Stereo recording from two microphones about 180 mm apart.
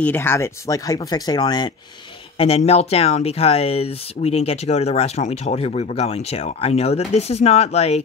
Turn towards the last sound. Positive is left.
turn(degrees=35)  # may be behind; listen again after turning